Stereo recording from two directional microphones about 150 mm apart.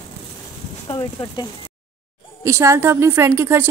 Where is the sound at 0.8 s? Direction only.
30° left (ahead or behind).